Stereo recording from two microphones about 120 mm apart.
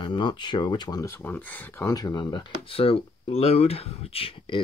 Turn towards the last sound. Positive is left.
turn(degrees=50)  # may be behind; listen again after turning